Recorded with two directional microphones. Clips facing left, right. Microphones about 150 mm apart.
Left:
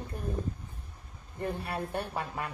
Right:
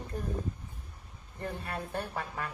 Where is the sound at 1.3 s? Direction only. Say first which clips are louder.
Left 3 dB; 15° left (ahead or behind).